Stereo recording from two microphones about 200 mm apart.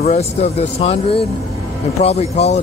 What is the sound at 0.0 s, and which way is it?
Speech, 35° left (ahead or behind).